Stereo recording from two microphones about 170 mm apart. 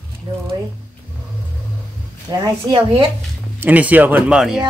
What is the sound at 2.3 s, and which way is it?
Speech, 30° right (ahead or behind).